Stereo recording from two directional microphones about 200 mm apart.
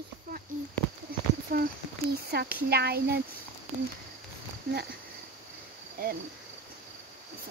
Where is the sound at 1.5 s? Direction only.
45° right (ahead or behind).